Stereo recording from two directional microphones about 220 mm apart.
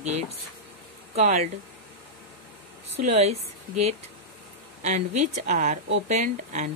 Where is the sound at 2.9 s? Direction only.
30° right (ahead or behind).